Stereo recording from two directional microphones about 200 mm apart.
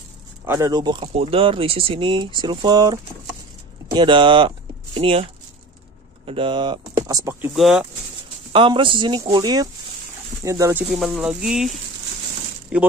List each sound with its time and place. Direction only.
0.5 s speech: 15° right (ahead or behind)
6.2 s speech: 25° right (ahead or behind)
7.5 s speech: centre (ahead or behind)
8.5 s speech: 25° right (ahead or behind); by 11.7 s 5° right (ahead or behind)
12.7 s speech: 5° right (ahead or behind)